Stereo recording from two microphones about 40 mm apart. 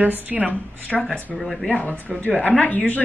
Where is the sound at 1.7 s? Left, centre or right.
Left.